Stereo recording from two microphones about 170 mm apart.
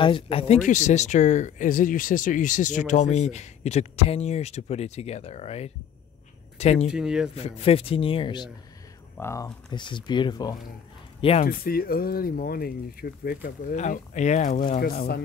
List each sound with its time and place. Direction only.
0.0 s speech: 30° left (ahead or behind)
0.6 s speech: 45° left (ahead or behind)
6.9 s speech: 5° right (ahead or behind)
7.3 s speech: 35° left (ahead or behind)
9.1 s speech: 15° left (ahead or behind)
9.7 s speech: 25° left (ahead or behind)
11.1 s speech: 35° left (ahead or behind)
11.4 s speech: 60° left (ahead or behind)